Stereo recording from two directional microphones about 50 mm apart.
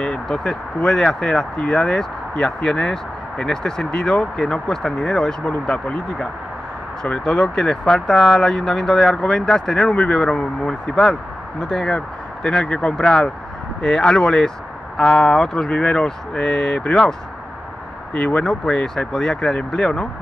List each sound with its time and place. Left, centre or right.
0.3 s speech: centre
5.4 s speech: left
18.1 s speech: left